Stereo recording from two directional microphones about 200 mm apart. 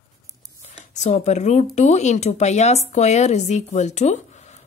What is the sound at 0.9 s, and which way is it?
Speech, 35° left (ahead or behind).